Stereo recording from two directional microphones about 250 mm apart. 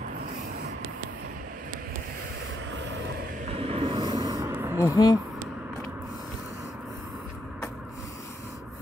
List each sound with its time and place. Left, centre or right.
2.7 s vehicle: right
3.4 s a sound: right
4.8 s speech: centre